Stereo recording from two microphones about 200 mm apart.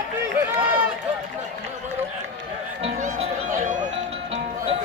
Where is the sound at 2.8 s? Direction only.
35° right (ahead or behind).